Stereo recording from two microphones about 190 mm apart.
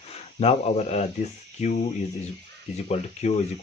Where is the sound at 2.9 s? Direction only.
35° left (ahead or behind).